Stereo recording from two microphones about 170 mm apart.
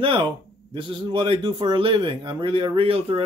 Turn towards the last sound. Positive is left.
turn(degrees=-35)  # may be behind; listen again after turning